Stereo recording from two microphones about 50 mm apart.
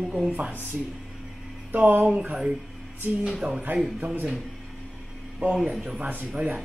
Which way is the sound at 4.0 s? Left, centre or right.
Right.